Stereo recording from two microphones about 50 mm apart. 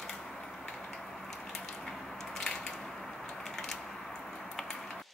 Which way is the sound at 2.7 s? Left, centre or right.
Centre.